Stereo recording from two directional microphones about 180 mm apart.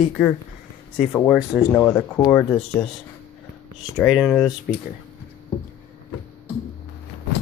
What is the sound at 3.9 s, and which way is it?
Speech, centre (ahead or behind).